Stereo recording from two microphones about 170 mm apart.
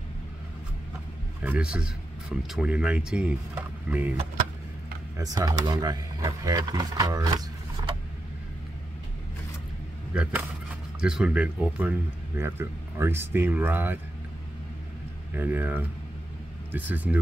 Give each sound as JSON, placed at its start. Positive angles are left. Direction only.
{"t": 1.4, "sound": "speech", "side_deg": -5}
{"t": 5.1, "sound": "speech", "side_deg": -20}
{"t": 10.1, "sound": "speech", "side_deg": -5}
{"t": 15.3, "sound": "speech", "side_deg": -10}